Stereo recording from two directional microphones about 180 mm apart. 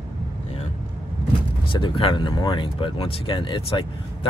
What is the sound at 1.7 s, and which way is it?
Speech, 30° left (ahead or behind).